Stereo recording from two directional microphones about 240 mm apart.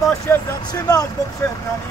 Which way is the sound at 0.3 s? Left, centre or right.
Centre.